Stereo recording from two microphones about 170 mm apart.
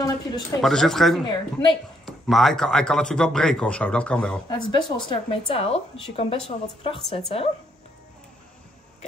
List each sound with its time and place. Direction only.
0.6 s speech: centre (ahead or behind)
1.2 s speech: 30° left (ahead or behind)
2.0 s speech: centre (ahead or behind)
4.5 s a woman's voice: 30° left (ahead or behind)